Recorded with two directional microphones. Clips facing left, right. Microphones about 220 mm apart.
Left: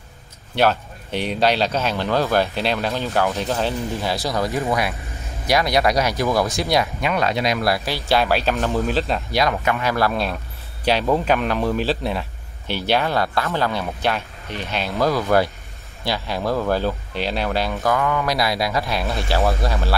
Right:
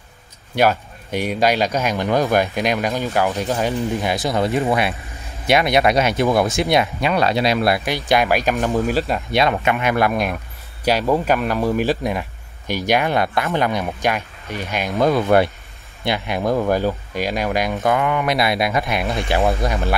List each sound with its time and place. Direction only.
0.6 s speech: 10° right (ahead or behind)
9.3 s speech: 25° right (ahead or behind)